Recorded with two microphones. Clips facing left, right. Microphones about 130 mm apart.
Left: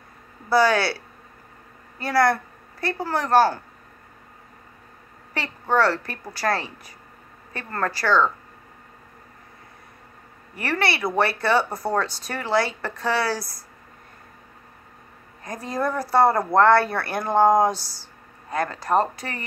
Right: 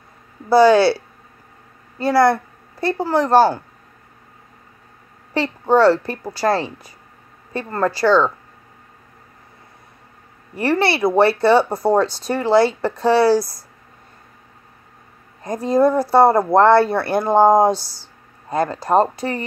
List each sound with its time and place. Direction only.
0.5 s speech: 25° right (ahead or behind)
2.0 s a woman's voice: 25° right (ahead or behind)
5.3 s speech: 25° right (ahead or behind)
10.5 s speech: 30° right (ahead or behind)
15.4 s speech: 25° right (ahead or behind)